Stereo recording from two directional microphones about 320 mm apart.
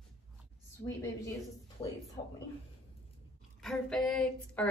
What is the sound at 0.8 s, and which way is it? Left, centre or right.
Speech, centre.